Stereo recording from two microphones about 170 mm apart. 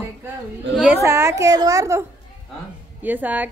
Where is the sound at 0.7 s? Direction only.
10° right (ahead or behind).